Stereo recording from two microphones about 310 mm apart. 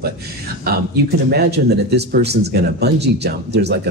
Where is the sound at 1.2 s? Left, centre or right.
Right.